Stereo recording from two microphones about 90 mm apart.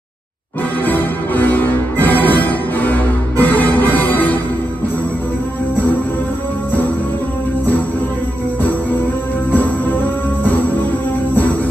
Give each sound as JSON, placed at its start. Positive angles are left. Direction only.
{"t": 0.8, "sound": "music", "side_deg": 20}
{"t": 9.5, "sound": "music", "side_deg": 20}